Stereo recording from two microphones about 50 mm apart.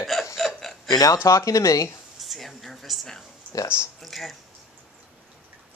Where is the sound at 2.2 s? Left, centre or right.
Centre.